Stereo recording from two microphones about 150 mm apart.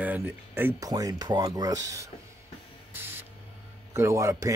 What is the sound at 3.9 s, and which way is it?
Speech, 20° right (ahead or behind).